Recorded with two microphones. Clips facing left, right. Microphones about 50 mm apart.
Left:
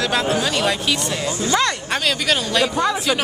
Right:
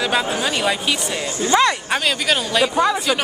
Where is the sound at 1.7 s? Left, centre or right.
Centre.